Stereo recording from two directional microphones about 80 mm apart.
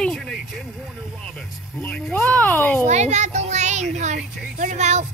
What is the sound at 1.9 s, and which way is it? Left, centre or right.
Speech, centre.